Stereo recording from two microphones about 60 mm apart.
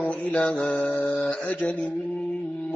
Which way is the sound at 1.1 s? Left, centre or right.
Centre.